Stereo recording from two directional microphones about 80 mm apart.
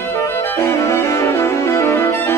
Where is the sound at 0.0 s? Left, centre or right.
Left.